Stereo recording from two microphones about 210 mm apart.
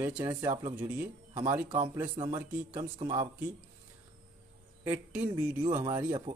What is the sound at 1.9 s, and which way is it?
Speech, 15° right (ahead or behind).